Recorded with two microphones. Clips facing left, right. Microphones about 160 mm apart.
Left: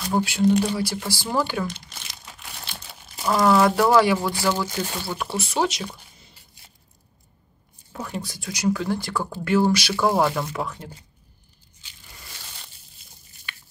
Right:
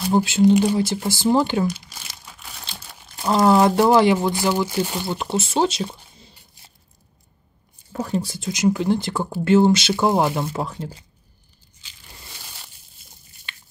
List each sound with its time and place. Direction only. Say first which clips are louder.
0.1 s speech: right 4 dB; 25° right (ahead or behind)
3.3 s speech: right 2 dB; 25° right (ahead or behind)
4.9 s speech: right 4 dB; 25° right (ahead or behind)
8.0 s speech: right 7 dB; 30° right (ahead or behind)
13.5 s biting: left 1 dB; 25° right (ahead or behind)